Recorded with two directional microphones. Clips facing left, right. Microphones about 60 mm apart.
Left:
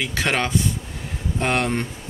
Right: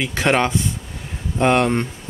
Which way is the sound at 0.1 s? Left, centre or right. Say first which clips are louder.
Right 5 dB; right.